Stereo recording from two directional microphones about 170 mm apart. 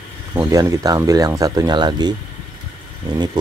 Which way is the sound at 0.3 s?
20° right (ahead or behind).